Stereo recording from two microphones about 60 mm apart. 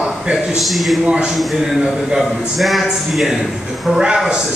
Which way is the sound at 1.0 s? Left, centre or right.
Centre.